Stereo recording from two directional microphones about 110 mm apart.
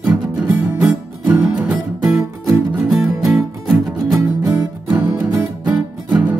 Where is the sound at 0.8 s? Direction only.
15° right (ahead or behind).